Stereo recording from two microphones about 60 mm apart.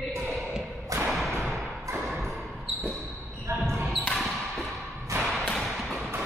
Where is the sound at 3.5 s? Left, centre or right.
Right.